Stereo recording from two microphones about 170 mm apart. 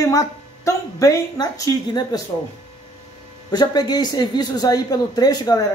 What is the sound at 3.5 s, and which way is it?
Speech, 25° left (ahead or behind).